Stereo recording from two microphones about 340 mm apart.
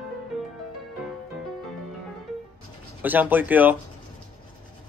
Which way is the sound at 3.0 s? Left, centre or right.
Centre.